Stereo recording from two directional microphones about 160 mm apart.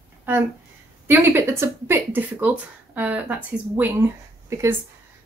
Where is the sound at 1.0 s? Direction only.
15° right (ahead or behind).